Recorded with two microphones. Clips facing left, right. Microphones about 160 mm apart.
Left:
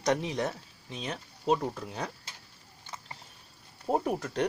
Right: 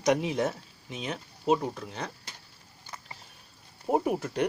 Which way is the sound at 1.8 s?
5° left (ahead or behind).